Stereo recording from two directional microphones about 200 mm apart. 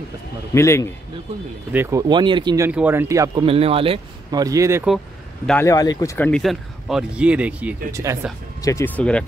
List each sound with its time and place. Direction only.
0.6 s speech: 15° left (ahead or behind)
1.7 s speech: 10° right (ahead or behind)
3.4 s speech: 30° right (ahead or behind)
5.5 s speech: 15° left (ahead or behind); by 8.3 s 15° right (ahead or behind)
8.5 s speech: 15° left (ahead or behind)